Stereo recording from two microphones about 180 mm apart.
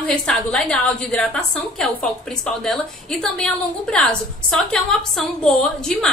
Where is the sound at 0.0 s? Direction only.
5° left (ahead or behind).